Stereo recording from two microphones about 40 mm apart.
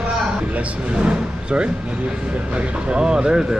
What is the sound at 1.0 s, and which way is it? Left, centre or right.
Speech, right.